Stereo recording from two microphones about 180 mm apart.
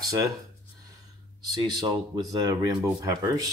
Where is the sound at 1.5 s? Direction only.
25° right (ahead or behind).